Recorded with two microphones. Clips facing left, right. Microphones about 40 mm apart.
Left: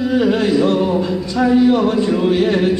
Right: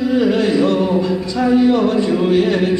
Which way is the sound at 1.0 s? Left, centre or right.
Left.